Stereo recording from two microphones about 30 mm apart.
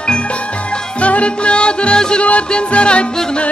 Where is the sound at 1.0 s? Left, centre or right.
Left.